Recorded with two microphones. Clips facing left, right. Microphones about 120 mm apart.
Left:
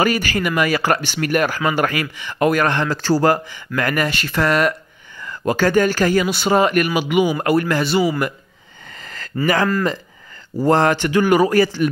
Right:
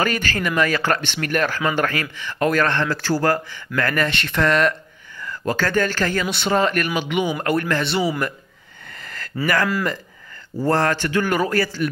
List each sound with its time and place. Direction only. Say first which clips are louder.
0.0 s speech: left 4 dB; 10° left (ahead or behind)
5.2 s speech: left 5 dB; 15° left (ahead or behind); by 8.3 s centre (ahead or behind)
8.9 s a sound: left 1 dB; 20° left (ahead or behind)
10.6 s speech: left 4 dB; 15° left (ahead or behind)